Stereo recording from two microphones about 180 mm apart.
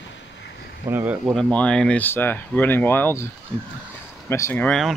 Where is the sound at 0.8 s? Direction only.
10° right (ahead or behind).